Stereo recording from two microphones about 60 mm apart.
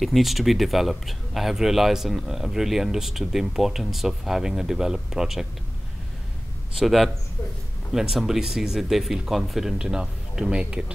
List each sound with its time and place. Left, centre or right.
0.0 s speech: centre
6.8 s speech: centre